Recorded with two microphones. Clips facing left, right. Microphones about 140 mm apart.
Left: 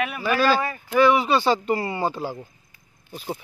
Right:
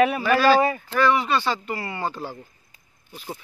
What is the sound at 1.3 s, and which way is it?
Speech, 15° left (ahead or behind).